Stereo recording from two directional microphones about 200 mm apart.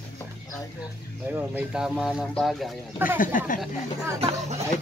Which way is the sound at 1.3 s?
5° right (ahead or behind).